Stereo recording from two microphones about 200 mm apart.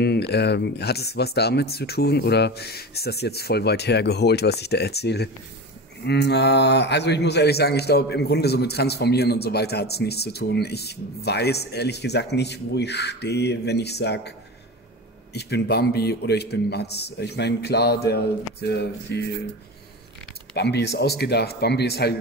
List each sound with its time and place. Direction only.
0.0 s a man's voice: 55° left (ahead or behind)
15.3 s a man's voice: 55° left (ahead or behind)
20.5 s a man's voice: 55° left (ahead or behind)